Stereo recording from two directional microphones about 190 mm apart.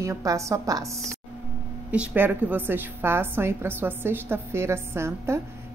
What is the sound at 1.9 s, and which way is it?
A woman's voice, 10° right (ahead or behind).